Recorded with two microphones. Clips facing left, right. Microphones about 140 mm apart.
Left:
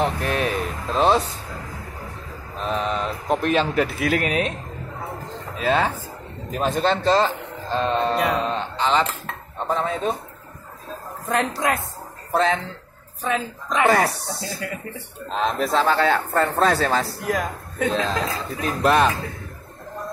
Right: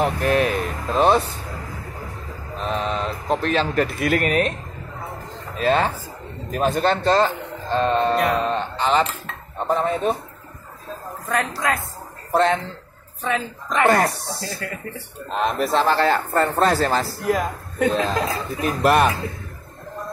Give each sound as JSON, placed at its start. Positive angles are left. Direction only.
{"t": 0.0, "sound": "a sound", "side_deg": 0}
{"t": 2.6, "sound": "speech", "side_deg": 0}
{"t": 5.6, "sound": "a man's voice", "side_deg": 0}
{"t": 11.2, "sound": "speech", "side_deg": 25}
{"t": 12.3, "sound": "speech", "side_deg": 0}